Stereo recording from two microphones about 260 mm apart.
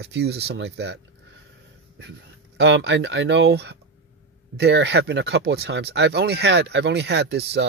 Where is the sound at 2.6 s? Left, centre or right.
Right.